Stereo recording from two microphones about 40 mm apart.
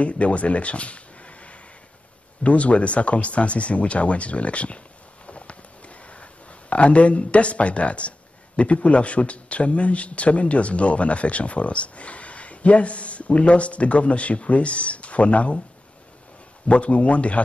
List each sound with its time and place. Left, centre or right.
0.0 s speech: left
16.6 s speech: left